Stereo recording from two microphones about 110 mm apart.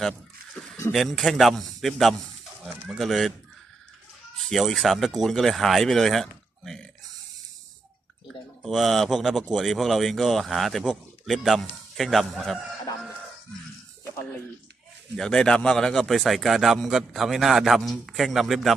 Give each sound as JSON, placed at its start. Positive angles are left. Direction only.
{"t": 0.9, "sound": "a man's voice", "side_deg": 0}
{"t": 4.5, "sound": "a man's voice", "side_deg": 5}
{"t": 8.6, "sound": "a man's voice", "side_deg": 0}
{"t": 15.1, "sound": "a man's voice", "side_deg": 5}